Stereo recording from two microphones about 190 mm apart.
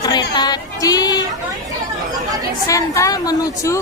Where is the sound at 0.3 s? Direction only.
20° left (ahead or behind).